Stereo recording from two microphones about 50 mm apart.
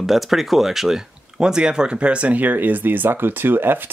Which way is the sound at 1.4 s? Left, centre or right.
Centre.